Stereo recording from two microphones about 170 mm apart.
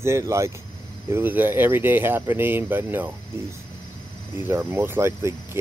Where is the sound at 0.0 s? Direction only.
15° right (ahead or behind).